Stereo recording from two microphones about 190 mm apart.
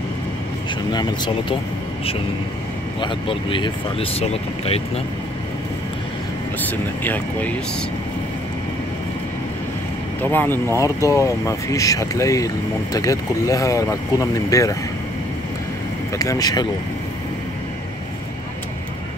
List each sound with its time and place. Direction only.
0.9 s speech: 25° left (ahead or behind)
3.0 s speech: 25° left (ahead or behind)
6.6 s speech: 10° left (ahead or behind)
10.3 s speech: 10° left (ahead or behind)
16.2 s speech: 20° left (ahead or behind)